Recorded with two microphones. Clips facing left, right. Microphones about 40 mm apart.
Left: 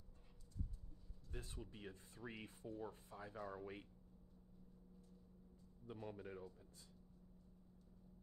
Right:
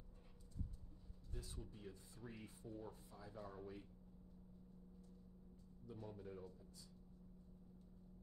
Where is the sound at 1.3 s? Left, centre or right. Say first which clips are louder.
Left 2 dB; left.